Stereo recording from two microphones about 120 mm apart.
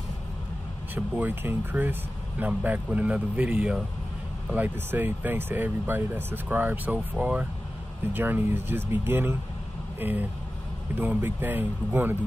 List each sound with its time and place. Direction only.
0.9 s speech: 15° right (ahead or behind)